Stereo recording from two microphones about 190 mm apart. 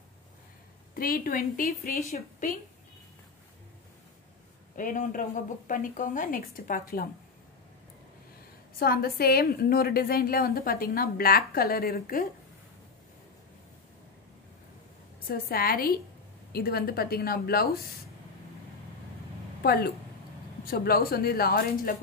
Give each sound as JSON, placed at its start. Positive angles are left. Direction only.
{"t": 0.9, "sound": "a woman's voice", "side_deg": 50}
{"t": 4.7, "sound": "a woman's voice", "side_deg": 45}
{"t": 8.7, "sound": "a woman's voice", "side_deg": 50}
{"t": 15.2, "sound": "a woman's voice", "side_deg": 55}
{"t": 19.6, "sound": "a woman's voice", "side_deg": 55}